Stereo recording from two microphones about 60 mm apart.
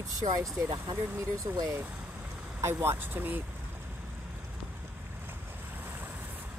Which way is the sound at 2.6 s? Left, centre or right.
Right.